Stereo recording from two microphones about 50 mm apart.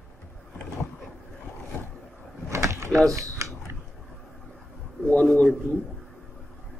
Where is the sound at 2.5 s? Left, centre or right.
Right.